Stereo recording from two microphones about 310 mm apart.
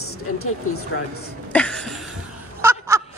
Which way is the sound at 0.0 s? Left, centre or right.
Left.